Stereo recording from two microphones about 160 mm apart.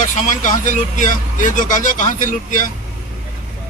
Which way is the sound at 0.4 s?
55° left (ahead or behind).